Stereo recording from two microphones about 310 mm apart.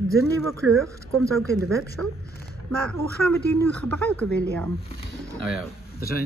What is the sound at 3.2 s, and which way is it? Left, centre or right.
Speech, centre.